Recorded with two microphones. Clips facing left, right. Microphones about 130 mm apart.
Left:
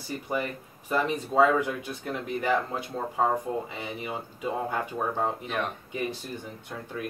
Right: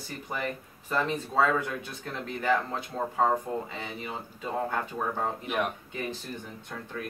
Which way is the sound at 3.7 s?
15° left (ahead or behind).